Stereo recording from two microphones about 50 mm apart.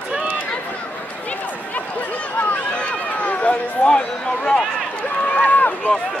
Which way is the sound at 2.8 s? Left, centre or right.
Left.